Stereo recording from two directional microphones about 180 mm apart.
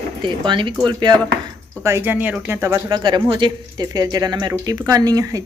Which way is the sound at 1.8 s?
15° right (ahead or behind).